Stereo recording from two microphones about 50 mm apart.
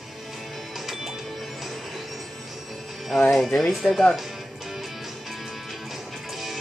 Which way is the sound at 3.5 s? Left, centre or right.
Centre.